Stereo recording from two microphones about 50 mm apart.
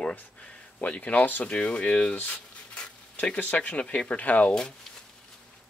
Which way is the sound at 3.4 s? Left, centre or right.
Left.